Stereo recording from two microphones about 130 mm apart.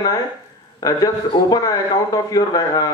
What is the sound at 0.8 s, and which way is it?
A man's voice, 25° left (ahead or behind).